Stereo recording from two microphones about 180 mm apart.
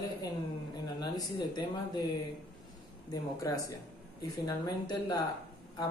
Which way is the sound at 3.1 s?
20° left (ahead or behind).